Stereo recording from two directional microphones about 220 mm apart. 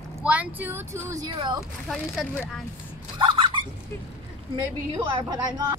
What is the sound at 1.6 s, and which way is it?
Speech, centre (ahead or behind).